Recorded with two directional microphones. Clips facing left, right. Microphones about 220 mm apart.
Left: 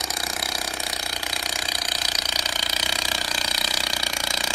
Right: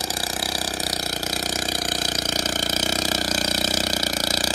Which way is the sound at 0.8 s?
45° right (ahead or behind).